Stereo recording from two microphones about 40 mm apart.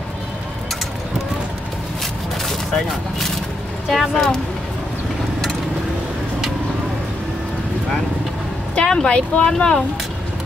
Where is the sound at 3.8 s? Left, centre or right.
Centre.